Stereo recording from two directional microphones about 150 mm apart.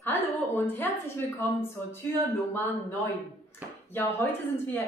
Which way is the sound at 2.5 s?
15° left (ahead or behind).